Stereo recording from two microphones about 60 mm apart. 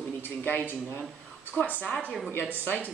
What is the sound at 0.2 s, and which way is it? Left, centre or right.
A man's voice, left.